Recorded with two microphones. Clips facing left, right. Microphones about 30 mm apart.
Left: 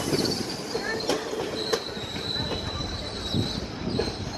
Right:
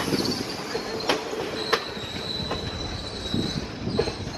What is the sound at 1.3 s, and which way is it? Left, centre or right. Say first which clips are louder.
Train: even; centre.